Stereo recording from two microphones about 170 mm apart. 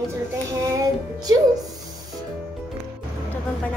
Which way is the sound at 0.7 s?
20° right (ahead or behind).